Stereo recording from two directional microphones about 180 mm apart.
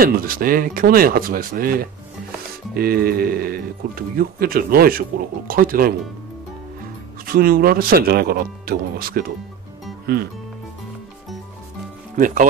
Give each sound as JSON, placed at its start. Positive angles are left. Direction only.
{"t": 0.0, "sound": "speech", "side_deg": -55}
{"t": 7.2, "sound": "speech", "side_deg": -55}